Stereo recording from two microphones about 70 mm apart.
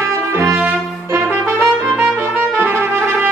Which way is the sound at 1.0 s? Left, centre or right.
Right.